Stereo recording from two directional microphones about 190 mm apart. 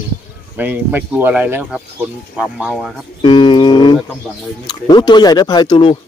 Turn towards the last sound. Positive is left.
turn(degrees=25)  # may be behind; listen again after turning